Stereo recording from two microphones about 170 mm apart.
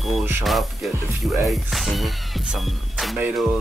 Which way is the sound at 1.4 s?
Centre (ahead or behind).